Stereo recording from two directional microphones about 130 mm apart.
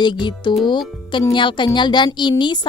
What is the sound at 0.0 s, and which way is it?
A woman's voice, 35° left (ahead or behind).